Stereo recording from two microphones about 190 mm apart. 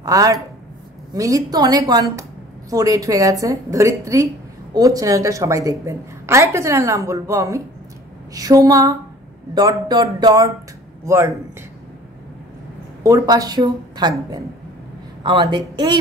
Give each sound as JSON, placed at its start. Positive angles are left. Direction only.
{"t": 0.0, "sound": "a woman's voice", "side_deg": -20}
{"t": 13.0, "sound": "a woman's voice", "side_deg": -15}
{"t": 15.2, "sound": "a woman's voice", "side_deg": -25}